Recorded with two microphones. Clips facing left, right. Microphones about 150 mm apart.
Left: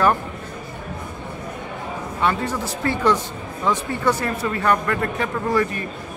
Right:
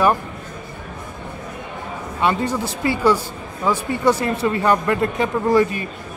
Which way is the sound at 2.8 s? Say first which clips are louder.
Right 2 dB; 10° right (ahead or behind).